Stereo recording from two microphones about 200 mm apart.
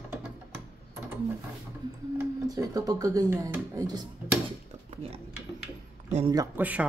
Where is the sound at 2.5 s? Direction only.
20° right (ahead or behind).